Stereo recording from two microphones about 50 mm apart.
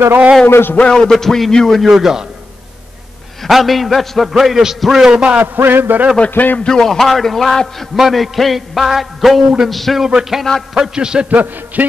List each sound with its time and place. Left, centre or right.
0.5 s a man's voice: left
0.7 s speech: centre
1.8 s a man's voice: centre
3.4 s a man's voice: centre
5.1 s a man's voice: right
5.4 s a sound: right
6.3 s a man's voice: left
6.6 s a man's voice: centre
10.0 s a man's voice: centre
11.2 s a sound: right